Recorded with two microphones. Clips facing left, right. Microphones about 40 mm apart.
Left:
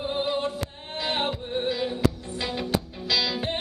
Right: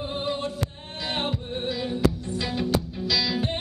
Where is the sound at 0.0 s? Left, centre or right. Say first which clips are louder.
Left 2 dB; centre.